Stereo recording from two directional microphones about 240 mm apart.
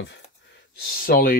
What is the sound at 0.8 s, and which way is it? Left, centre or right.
Speech, left.